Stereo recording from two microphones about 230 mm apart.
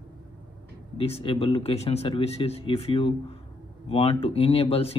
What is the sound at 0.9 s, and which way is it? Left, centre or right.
A man's voice, left.